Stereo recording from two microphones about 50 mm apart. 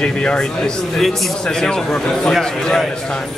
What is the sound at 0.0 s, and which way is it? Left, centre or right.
A man's voice, centre.